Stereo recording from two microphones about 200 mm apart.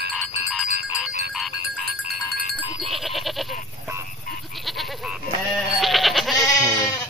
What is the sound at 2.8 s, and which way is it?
Goat, centre (ahead or behind).